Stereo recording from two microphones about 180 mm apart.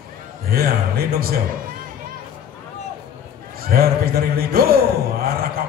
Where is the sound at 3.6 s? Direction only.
55° right (ahead or behind).